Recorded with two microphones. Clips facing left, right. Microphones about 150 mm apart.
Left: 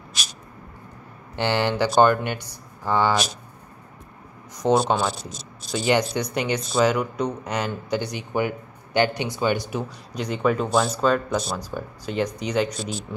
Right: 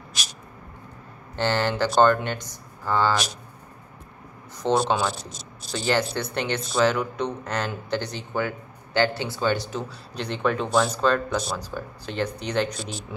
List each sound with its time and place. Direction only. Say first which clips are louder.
1.3 s speech: left 1 dB; 15° left (ahead or behind)
4.6 s speech: left 2 dB; 10° left (ahead or behind)